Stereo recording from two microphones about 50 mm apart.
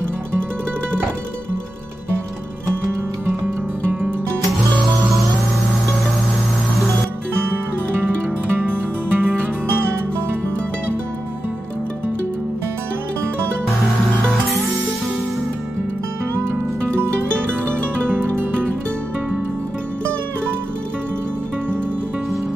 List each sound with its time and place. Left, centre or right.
8.5 s music: right
18.1 s music: right